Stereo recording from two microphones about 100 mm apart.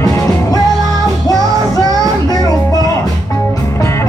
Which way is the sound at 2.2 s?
40° left (ahead or behind).